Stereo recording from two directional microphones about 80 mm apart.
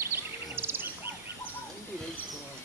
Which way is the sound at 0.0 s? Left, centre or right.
Right.